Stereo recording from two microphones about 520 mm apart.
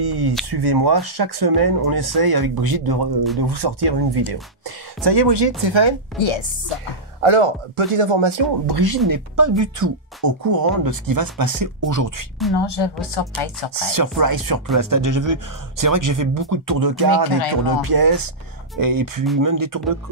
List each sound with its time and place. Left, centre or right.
0.0 s speech: right
6.1 s speech: left
7.2 s speech: right
12.5 s a woman's voice: left
13.7 s speech: right